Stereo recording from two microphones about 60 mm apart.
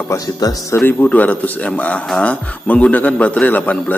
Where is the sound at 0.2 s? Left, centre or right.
Left.